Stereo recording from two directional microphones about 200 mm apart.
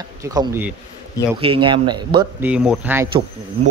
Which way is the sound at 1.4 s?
25° right (ahead or behind).